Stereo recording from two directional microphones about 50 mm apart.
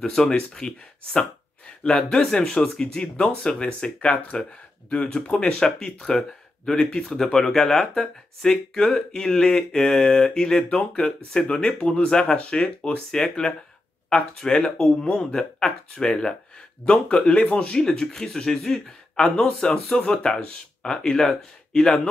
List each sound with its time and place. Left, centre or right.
0.0 s speech: centre